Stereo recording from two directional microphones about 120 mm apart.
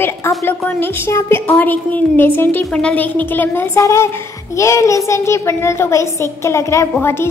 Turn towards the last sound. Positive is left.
turn(degrees=20)  # may be behind; listen again after turning